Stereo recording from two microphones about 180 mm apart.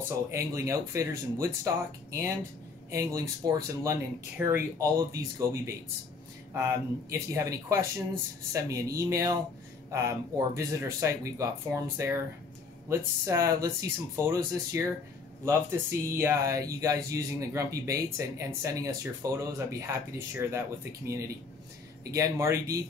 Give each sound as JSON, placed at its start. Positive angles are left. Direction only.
{"t": 0.3, "sound": "speech", "side_deg": -15}
{"t": 2.9, "sound": "speech", "side_deg": -15}